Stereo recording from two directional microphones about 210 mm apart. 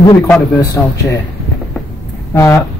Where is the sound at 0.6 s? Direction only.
15° left (ahead or behind).